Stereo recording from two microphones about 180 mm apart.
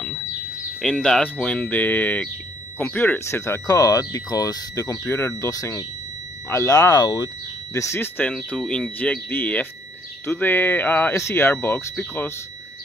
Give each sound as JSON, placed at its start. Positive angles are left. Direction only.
{"t": 0.7, "sound": "speech", "side_deg": 5}